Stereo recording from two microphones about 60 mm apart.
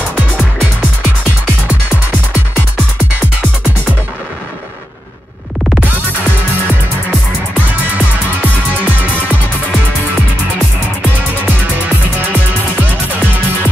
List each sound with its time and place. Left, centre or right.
8.0 s music: right